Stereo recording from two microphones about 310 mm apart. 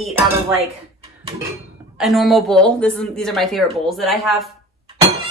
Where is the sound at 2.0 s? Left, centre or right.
Centre.